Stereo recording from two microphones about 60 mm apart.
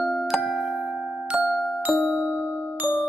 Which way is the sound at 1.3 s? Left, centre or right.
Centre.